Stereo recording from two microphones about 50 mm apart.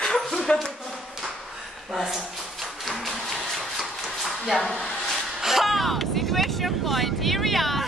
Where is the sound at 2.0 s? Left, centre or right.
Centre.